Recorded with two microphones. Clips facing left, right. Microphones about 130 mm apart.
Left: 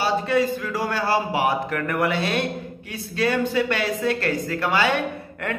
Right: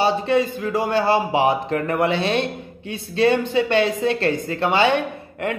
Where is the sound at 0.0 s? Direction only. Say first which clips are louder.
Right 2 dB; 20° right (ahead or behind).